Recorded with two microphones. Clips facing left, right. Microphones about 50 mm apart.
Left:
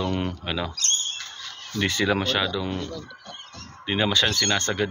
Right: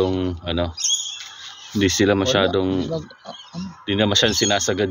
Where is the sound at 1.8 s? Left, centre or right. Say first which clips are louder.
Right 6 dB; centre.